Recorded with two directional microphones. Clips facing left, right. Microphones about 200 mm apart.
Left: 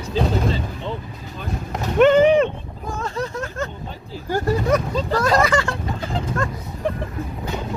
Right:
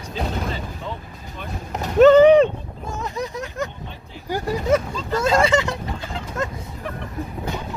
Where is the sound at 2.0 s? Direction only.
35° right (ahead or behind).